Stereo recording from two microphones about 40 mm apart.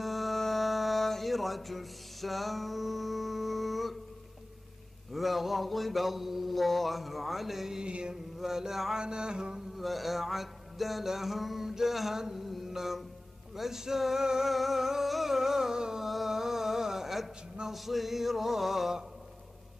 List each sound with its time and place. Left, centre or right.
0.0 s music: centre
5.1 s mantra: centre
7.8 s mantra: right
8.4 s music: centre
9.0 s mantra: centre
9.8 s mantra: centre
12.2 s music: centre
16.1 s mantra: centre